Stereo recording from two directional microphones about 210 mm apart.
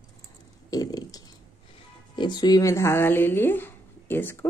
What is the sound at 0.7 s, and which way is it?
Speech, 15° left (ahead or behind).